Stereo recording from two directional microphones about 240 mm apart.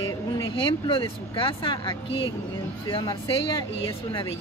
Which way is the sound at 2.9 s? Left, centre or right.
Centre.